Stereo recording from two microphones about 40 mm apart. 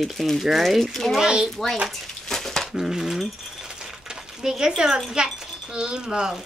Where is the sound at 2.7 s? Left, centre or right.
Centre.